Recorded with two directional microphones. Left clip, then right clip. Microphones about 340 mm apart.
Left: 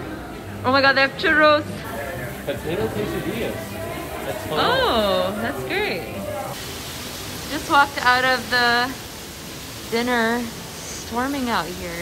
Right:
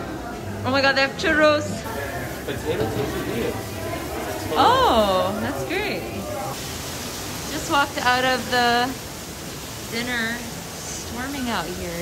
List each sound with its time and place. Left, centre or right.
0.7 s a man's voice: centre
4.6 s speech: centre
7.7 s speech: centre
9.9 s a man's voice: centre